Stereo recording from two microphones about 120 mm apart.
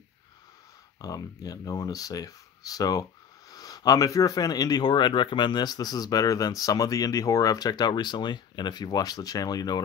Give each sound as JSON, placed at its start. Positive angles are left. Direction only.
{"t": 0.9, "sound": "speech", "side_deg": 30}